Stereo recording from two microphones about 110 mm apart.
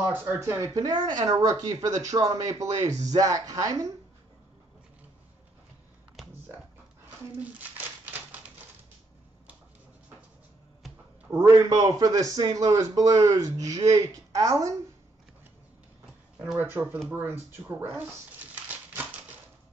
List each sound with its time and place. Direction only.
0.1 s a man's voice: 25° right (ahead or behind)
6.2 s a sound: centre (ahead or behind)
7.3 s crumpling: 15° right (ahead or behind)
11.2 s a man's voice: 25° right (ahead or behind)
16.5 s speech: 20° right (ahead or behind)